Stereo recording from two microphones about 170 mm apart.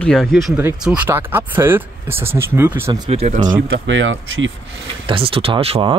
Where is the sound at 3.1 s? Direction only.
40° right (ahead or behind).